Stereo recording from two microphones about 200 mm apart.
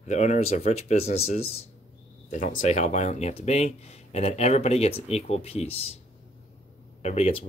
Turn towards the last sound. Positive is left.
turn(degrees=30)  # may be behind; listen again after turning